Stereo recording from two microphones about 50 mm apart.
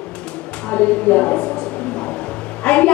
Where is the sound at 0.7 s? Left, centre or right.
Left.